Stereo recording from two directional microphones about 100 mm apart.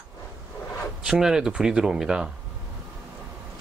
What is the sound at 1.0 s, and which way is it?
Speech, 5° right (ahead or behind).